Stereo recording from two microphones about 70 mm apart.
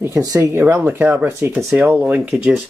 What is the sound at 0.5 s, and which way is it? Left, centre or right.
Speech, right.